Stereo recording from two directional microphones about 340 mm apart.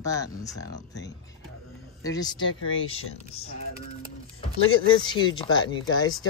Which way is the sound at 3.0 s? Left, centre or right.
Left.